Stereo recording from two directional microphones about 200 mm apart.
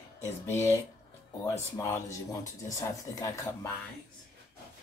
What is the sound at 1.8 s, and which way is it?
Speech, 15° left (ahead or behind).